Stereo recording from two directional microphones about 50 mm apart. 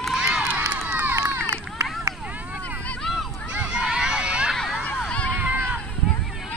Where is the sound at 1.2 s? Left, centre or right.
Right.